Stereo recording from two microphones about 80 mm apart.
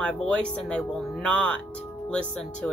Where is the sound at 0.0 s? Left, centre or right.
Centre.